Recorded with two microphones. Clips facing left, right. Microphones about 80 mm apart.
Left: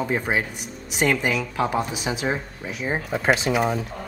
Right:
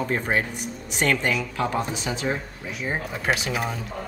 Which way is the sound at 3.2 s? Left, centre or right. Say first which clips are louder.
Left 5 dB; left.